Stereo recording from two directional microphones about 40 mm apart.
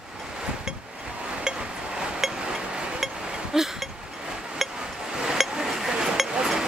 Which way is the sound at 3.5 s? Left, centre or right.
Centre.